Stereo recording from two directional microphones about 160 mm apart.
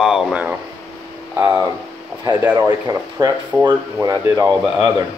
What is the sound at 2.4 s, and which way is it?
Speech, 15° right (ahead or behind).